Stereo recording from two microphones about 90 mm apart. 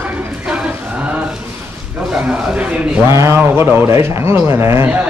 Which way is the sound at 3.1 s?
30° right (ahead or behind).